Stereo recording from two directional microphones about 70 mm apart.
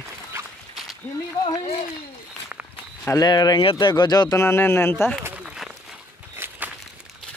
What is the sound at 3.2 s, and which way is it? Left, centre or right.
Speech, left.